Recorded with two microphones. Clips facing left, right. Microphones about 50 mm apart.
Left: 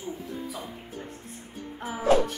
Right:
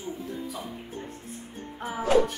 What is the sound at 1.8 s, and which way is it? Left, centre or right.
Music, centre.